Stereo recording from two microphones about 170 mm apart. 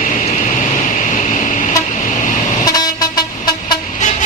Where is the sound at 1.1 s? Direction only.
50° left (ahead or behind).